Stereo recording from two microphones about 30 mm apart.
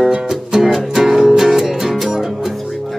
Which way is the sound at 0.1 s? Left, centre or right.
Centre.